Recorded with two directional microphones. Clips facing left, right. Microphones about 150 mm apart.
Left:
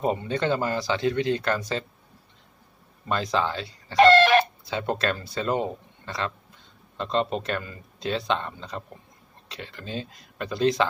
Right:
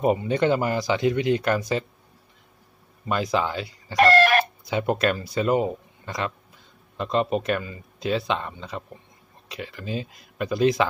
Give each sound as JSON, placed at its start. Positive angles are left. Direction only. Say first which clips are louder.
{"t": 0.0, "sound": "speech", "louder": "right 4 dB", "side_deg": -10}
{"t": 3.1, "sound": "speech", "louder": "right 1 dB", "side_deg": -10}
{"t": 3.9, "sound": "chicken", "louder": "left 2 dB", "side_deg": 25}
{"t": 4.6, "sound": "speech", "louder": "right 4 dB", "side_deg": -15}